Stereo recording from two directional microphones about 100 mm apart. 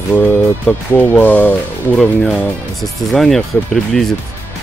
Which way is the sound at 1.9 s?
5° left (ahead or behind).